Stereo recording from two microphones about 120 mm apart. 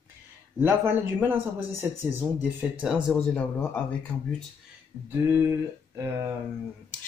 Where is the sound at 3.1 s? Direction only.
10° left (ahead or behind).